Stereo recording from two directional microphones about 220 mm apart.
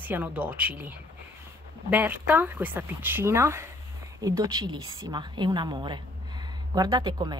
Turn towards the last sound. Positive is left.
turn(degrees=-20)  # may be behind; listen again after turning